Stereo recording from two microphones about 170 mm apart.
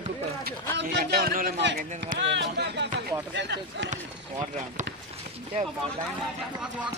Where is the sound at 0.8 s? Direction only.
75° right (ahead or behind).